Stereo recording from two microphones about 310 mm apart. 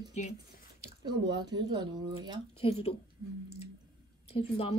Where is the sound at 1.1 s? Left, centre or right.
Centre.